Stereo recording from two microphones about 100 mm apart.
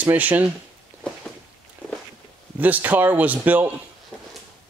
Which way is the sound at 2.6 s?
15° right (ahead or behind).